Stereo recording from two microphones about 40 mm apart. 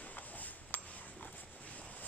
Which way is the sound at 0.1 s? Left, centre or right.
Left.